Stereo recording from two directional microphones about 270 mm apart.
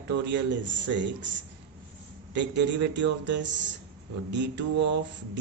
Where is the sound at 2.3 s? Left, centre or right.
Right.